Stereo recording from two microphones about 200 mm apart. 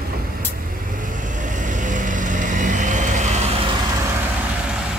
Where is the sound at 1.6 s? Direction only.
40° right (ahead or behind).